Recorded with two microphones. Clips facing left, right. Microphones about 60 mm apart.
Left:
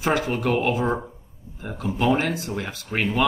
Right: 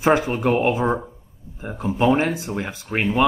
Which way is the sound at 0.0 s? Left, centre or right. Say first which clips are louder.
Right 4 dB; right.